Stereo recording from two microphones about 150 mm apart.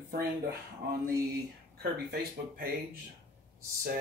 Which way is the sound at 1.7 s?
90° right.